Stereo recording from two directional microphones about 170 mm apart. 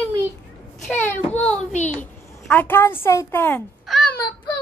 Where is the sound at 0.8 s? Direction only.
10° left (ahead or behind).